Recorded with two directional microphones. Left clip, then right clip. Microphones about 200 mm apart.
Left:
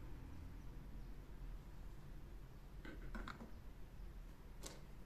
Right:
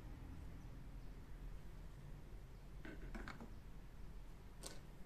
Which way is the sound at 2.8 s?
15° right (ahead or behind).